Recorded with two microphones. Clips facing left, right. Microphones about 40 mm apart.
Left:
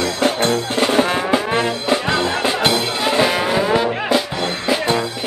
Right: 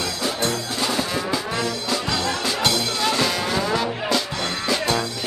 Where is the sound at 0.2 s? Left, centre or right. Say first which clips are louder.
Left 8 dB; left.